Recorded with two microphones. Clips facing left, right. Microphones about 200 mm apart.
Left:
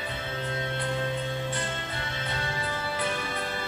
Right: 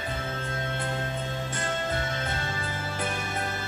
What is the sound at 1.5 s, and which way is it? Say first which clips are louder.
Music: right 3 dB; 45° right (ahead or behind).